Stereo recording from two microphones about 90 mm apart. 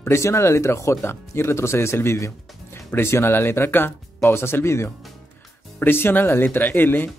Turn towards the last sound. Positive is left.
turn(degrees=20)  # may be behind; listen again after turning